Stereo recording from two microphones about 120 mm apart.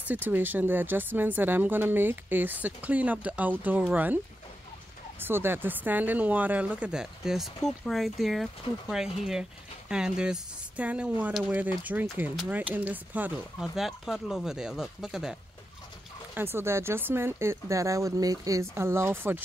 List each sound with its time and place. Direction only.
0.0 s speech: 15° right (ahead or behind)
5.2 s speech: 20° right (ahead or behind)
13.7 s speech: centre (ahead or behind)
16.3 s speech: 20° right (ahead or behind)